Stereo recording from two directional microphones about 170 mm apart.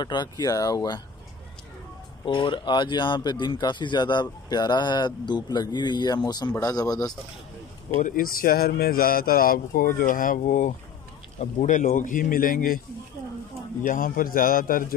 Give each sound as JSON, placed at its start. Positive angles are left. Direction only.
{"t": 0.0, "sound": "speech", "side_deg": 25}
{"t": 2.2, "sound": "speech", "side_deg": 30}
{"t": 8.0, "sound": "speech", "side_deg": 55}
{"t": 13.8, "sound": "speech", "side_deg": 55}